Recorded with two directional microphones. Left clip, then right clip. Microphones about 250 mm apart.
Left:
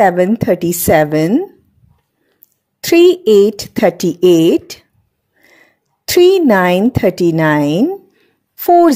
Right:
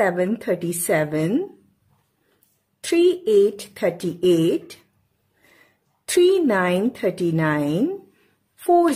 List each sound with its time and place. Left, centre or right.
0.0 s speech: left
2.8 s a woman's voice: left